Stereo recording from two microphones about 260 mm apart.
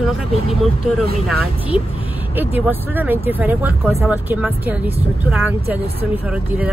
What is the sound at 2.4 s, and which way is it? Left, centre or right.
Speech, centre.